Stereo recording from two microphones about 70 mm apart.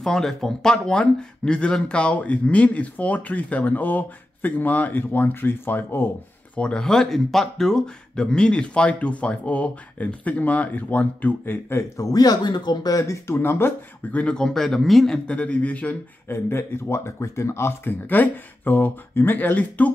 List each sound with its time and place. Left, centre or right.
0.0 s speech: centre; by 6.0 s left
6.5 s speech: centre; by 11.8 s left
12.0 s speech: left
13.4 s speech: left
14.1 s speech: centre
15.2 s speech: centre
16.3 s speech: left